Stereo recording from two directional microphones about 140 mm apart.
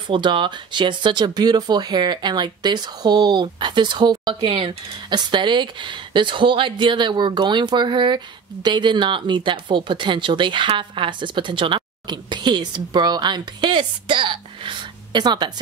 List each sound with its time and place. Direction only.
0.1 s speech: 35° right (ahead or behind)